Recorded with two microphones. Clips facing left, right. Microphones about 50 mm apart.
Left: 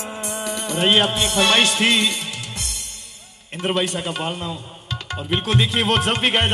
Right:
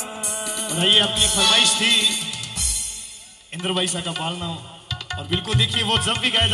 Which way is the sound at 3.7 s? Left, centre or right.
Left.